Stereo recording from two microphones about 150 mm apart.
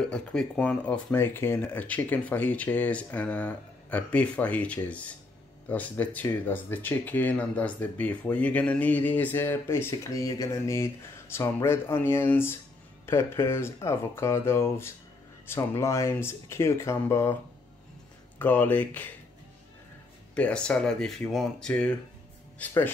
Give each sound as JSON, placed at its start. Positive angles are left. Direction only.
{"t": 0.0, "sound": "speech", "side_deg": 5}
{"t": 18.4, "sound": "speech", "side_deg": 10}
{"t": 20.3, "sound": "speech", "side_deg": 10}